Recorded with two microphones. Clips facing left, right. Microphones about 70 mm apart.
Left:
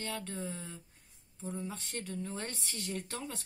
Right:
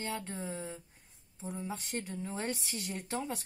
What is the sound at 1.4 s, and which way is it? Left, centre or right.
Speech, centre.